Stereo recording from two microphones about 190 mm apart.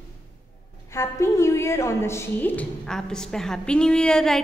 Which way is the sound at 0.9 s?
15° left (ahead or behind).